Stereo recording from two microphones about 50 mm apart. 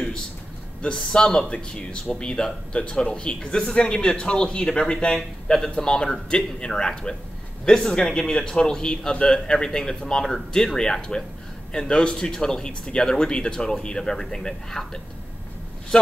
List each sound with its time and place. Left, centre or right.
0.8 s a man's voice: centre
5.5 s speech: centre